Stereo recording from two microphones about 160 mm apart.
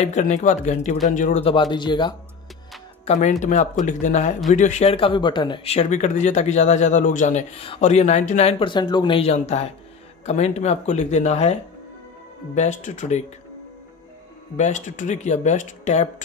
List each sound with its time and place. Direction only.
0.0 s speech: 45° left (ahead or behind)
1.4 s speech: 30° left (ahead or behind)
3.1 s speech: 50° left (ahead or behind)
7.6 s speech: 40° left (ahead or behind)
12.5 s speech: 50° left (ahead or behind)
14.6 s speech: 50° left (ahead or behind)